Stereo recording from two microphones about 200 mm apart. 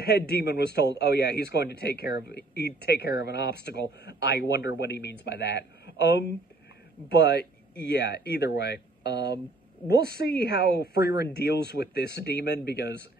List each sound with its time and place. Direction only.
0.0 s a man's voice: 55° left (ahead or behind)